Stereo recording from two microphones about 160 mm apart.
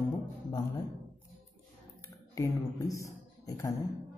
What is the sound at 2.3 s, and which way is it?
Speech, 20° left (ahead or behind).